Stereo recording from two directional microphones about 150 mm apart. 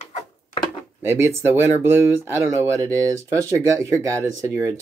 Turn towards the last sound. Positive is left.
turn(degrees=-20)  # may be behind; listen again after turning